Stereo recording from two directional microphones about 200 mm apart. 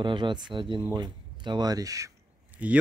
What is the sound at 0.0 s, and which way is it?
Speech, 25° right (ahead or behind).